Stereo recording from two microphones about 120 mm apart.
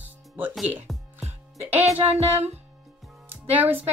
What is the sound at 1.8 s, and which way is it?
Music, 60° right (ahead or behind).